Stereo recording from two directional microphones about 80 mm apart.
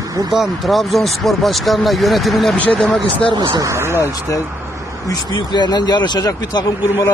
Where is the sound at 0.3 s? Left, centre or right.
Centre.